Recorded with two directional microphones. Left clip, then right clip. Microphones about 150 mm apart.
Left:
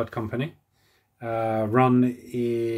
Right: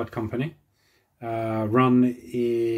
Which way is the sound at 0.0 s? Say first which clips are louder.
Even; 20° left (ahead or behind).